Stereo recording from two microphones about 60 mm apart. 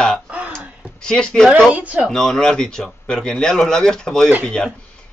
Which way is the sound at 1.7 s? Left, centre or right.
Right.